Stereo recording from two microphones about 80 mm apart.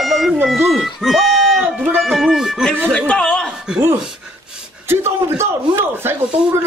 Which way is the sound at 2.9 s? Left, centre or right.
Centre.